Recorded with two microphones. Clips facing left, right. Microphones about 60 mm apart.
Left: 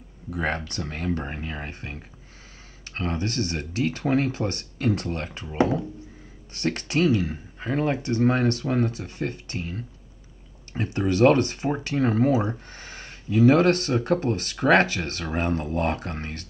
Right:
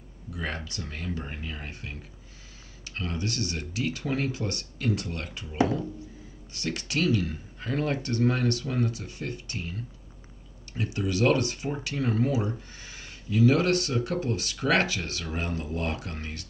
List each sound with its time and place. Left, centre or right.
0.3 s speech: left
6.5 s speech: left
7.0 s speech: left
12.5 s speech: left